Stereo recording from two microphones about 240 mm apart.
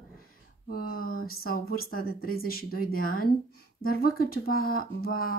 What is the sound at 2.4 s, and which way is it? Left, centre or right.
Speech, left.